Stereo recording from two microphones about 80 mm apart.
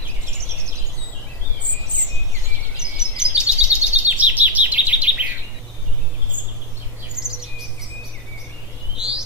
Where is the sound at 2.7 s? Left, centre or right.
Centre.